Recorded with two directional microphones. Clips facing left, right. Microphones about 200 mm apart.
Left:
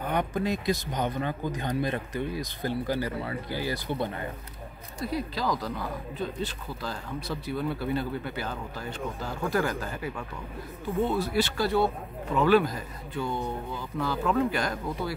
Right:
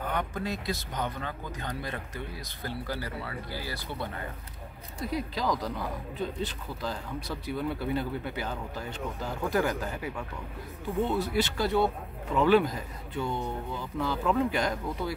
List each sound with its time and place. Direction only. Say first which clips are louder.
0.1 s speech: left 7 dB; 15° left (ahead or behind)
5.0 s speech: left 1 dB; 15° right (ahead or behind)
13.2 s speech: left 1 dB; 10° left (ahead or behind)
13.9 s speech: left 1 dB; 20° right (ahead or behind)